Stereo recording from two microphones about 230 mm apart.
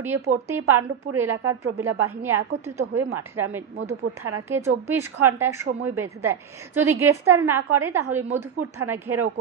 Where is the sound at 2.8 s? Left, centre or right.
Right.